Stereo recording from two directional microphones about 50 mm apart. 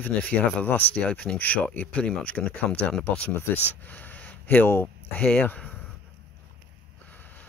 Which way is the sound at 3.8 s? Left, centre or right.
Left.